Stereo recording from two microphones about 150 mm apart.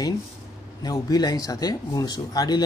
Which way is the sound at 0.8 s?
25° left (ahead or behind).